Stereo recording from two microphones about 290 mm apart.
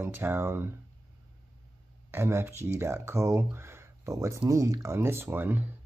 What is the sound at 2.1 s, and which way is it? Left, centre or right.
Speech, centre.